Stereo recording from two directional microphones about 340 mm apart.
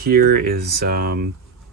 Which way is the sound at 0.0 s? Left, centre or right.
Right.